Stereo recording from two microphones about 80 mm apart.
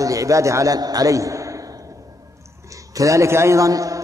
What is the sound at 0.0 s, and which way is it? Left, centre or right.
Speech, right.